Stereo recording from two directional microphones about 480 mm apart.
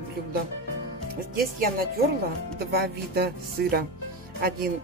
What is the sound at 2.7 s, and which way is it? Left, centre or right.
Speech, centre.